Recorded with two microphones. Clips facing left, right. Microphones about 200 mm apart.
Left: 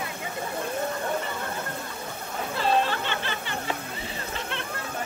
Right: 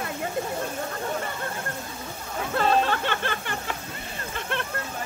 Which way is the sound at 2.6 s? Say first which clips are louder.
Right 2 dB; 55° right (ahead or behind).